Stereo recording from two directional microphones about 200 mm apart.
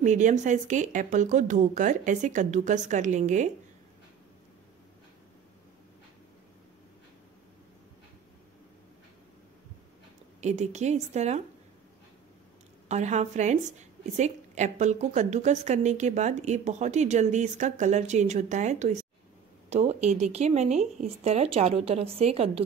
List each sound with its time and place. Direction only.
0.0 s a woman's voice: 40° right (ahead or behind)
10.4 s a woman's voice: 35° right (ahead or behind)
12.8 s a woman's voice: 35° right (ahead or behind)